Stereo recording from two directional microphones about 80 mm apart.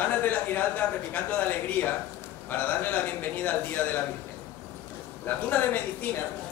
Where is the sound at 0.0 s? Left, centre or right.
Left.